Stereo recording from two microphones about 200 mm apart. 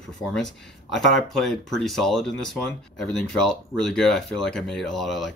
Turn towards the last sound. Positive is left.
turn(degrees=0)  # may be behind; listen again after turning